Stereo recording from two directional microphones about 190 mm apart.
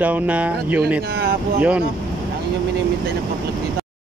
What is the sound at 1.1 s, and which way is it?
Speech, 55° right (ahead or behind).